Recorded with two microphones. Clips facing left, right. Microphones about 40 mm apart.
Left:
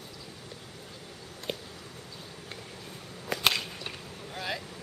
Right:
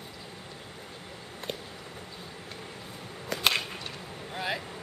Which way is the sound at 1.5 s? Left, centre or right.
Centre.